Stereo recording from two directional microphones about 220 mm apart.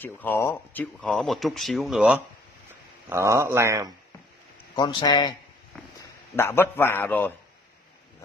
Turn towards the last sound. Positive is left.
turn(degrees=10)  # may be behind; listen again after turning